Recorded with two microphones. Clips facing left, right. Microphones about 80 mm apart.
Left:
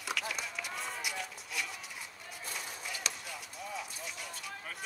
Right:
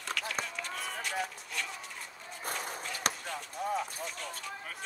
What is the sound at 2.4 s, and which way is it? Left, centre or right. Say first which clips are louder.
Walk: right 6 dB; right.